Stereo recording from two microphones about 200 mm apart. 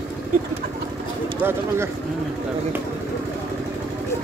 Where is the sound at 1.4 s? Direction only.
10° right (ahead or behind).